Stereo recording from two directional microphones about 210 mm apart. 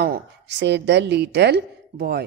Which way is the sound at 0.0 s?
50° right (ahead or behind).